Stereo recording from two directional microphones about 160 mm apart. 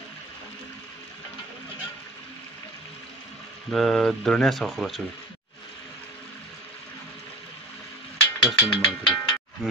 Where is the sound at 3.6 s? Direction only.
Centre (ahead or behind).